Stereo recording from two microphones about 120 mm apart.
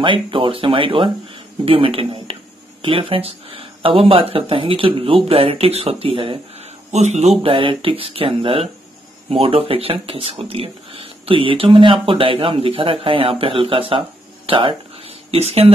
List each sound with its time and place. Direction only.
0.0 s speech: 45° right (ahead or behind)
6.9 s speech: 70° right (ahead or behind)